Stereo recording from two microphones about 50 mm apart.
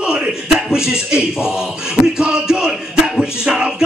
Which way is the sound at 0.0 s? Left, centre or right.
Centre.